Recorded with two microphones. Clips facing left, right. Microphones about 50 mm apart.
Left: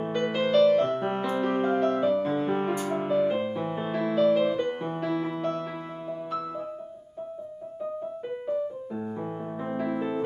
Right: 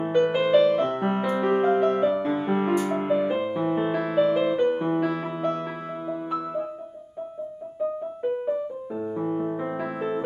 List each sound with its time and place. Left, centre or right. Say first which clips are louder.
0.0 s music: right 5 dB; centre
9.2 s music: right 6 dB; centre